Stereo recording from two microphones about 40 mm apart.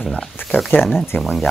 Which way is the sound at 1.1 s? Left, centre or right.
Left.